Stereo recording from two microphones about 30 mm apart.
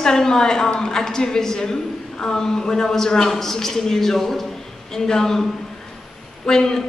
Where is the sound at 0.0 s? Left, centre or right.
Left.